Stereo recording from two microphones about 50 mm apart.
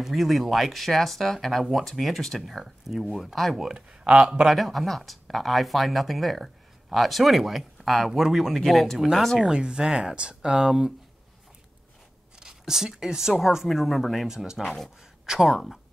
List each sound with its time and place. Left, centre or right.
0.0 s speech: centre
3.7 s speech: right
4.5 s speech: centre
9.4 s speech: centre
12.4 s speech: centre
14.2 s speech: centre